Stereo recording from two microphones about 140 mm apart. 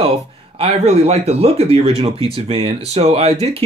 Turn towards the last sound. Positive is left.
turn(degrees=-45)  # may be behind; listen again after turning